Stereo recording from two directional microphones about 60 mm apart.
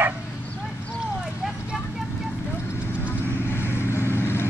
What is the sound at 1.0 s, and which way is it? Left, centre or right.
Clip-clop, centre.